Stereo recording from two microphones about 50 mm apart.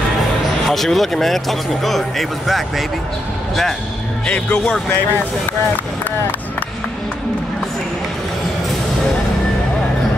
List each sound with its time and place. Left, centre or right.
0.7 s speech: centre
4.3 s speech: left